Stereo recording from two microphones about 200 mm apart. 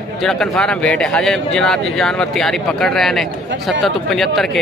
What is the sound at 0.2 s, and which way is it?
A man's voice, centre (ahead or behind).